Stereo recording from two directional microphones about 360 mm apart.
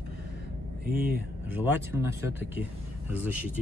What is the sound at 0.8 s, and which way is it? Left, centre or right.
Speech, right.